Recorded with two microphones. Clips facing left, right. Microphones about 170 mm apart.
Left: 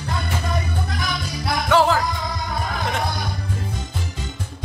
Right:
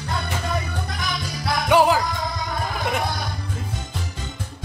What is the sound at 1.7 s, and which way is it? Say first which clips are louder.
Music: right 1 dB; 15° right (ahead or behind).